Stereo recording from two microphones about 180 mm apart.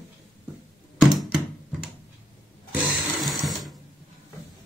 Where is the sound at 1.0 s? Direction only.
Centre (ahead or behind).